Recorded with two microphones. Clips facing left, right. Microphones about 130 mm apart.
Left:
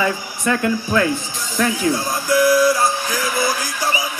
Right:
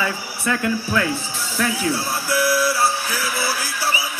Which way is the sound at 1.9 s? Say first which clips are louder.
Left 4 dB; 15° left (ahead or behind).